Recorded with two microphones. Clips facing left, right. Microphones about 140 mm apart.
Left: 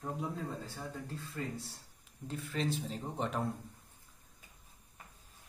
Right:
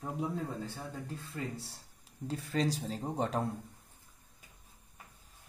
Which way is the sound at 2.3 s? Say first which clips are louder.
Right 3 dB; 35° right (ahead or behind).